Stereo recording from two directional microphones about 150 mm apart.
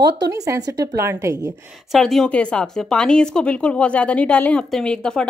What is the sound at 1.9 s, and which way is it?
Speech, centre (ahead or behind).